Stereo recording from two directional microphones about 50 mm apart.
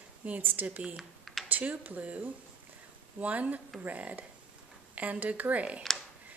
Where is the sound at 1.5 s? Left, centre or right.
Right.